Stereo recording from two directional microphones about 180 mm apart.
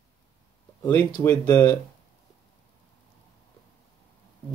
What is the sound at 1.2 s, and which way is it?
Speech, 10° left (ahead or behind).